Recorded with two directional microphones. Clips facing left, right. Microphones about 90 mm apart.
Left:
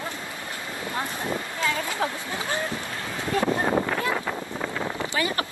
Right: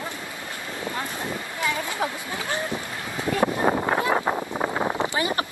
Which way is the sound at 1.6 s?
20° right (ahead or behind).